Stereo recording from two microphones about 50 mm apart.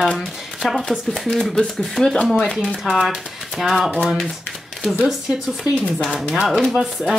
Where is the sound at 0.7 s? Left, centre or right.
Centre.